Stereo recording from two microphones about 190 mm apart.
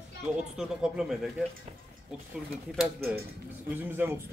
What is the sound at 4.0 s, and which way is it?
Speech, 10° right (ahead or behind).